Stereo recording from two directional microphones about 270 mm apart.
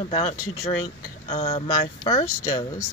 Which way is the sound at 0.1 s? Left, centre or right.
Left.